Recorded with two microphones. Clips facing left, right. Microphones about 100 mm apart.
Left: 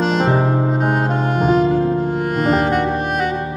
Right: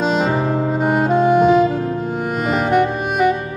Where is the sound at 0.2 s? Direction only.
40° left (ahead or behind).